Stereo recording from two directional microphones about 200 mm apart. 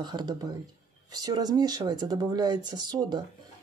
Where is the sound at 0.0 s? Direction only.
20° right (ahead or behind).